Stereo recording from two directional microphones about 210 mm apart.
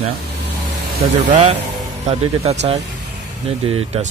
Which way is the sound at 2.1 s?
30° right (ahead or behind).